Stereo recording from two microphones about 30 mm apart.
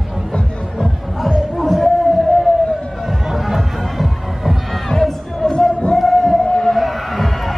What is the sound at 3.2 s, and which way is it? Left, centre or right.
Music, centre.